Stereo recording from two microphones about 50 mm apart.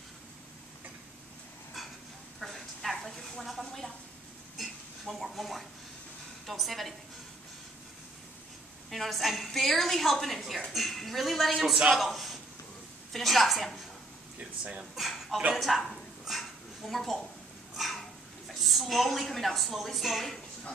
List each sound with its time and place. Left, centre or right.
2.4 s a sound: centre
6.4 s a woman's voice: centre
8.9 s a woman's voice: centre
14.6 s speech: right
15.0 s a sound: centre
17.7 s cat: centre
18.5 s a woman's voice: centre